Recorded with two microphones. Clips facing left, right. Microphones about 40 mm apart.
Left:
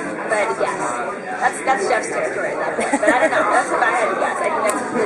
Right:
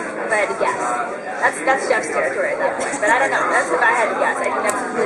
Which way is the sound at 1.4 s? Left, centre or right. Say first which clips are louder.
Right 1 dB; centre.